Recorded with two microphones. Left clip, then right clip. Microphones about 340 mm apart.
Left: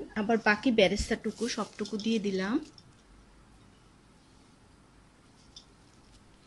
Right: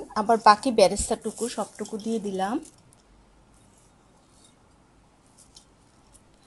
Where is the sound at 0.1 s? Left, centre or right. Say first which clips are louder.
Right 9 dB; right.